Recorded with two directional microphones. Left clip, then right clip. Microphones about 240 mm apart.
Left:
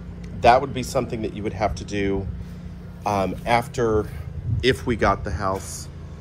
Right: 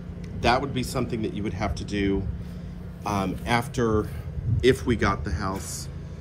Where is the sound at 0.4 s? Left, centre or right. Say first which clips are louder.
Left 7 dB; centre.